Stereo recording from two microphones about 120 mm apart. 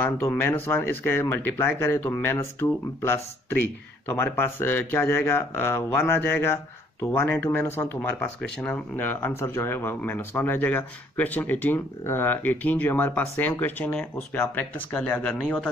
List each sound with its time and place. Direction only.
0.0 s speech: 20° left (ahead or behind)